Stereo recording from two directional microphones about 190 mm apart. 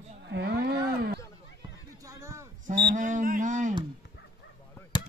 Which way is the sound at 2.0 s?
15° right (ahead or behind).